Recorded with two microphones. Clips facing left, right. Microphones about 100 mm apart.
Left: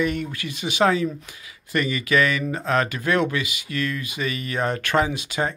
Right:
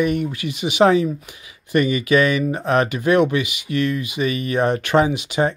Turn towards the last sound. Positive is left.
turn(degrees=-20)  # may be behind; listen again after turning